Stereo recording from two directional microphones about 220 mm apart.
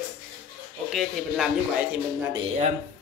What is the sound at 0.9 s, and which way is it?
Speech, centre (ahead or behind).